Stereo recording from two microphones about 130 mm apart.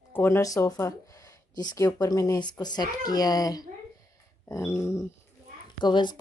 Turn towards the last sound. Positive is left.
turn(degrees=35)  # may be behind; listen again after turning